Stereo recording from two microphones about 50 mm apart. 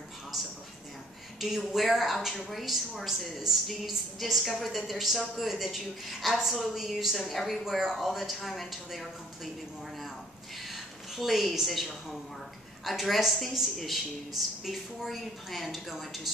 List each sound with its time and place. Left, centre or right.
1.7 s a woman's voice: centre
7.6 s a woman's voice: centre
10.6 s a woman's voice: centre